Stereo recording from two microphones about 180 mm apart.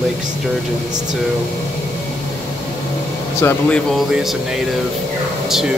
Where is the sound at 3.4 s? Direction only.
15° left (ahead or behind).